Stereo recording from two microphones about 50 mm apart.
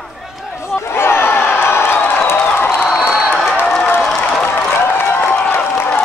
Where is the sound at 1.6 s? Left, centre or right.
Left.